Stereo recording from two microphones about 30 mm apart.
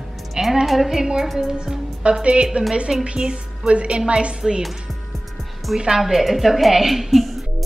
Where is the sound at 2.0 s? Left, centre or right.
Right.